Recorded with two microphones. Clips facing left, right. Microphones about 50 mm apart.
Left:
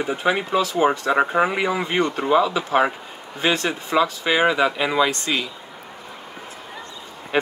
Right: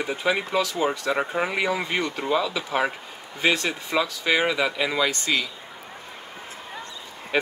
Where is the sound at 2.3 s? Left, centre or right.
Left.